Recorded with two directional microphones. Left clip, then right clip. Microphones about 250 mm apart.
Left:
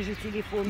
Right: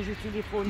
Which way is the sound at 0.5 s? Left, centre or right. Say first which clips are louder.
Even; left.